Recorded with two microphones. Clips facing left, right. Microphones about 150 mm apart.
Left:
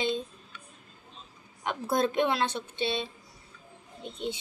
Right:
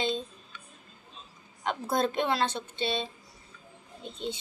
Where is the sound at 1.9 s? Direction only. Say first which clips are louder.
Left 2 dB; 15° left (ahead or behind).